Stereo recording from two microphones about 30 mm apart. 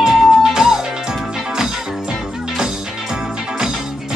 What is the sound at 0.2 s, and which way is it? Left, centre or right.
Music, centre.